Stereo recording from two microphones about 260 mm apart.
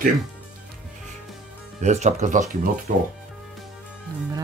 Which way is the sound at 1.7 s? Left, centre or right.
Right.